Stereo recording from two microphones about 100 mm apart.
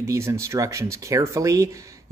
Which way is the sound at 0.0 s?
30° right (ahead or behind).